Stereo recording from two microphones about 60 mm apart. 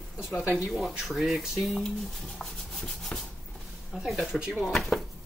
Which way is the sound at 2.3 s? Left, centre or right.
Centre.